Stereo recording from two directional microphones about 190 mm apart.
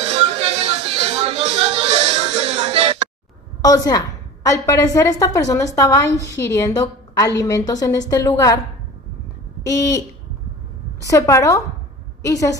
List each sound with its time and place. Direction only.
0.0 s a sound: 30° right (ahead or behind)
2.6 s music: 30° right (ahead or behind)
3.6 s a woman's voice: 20° left (ahead or behind)
9.7 s a woman's voice: 15° left (ahead or behind)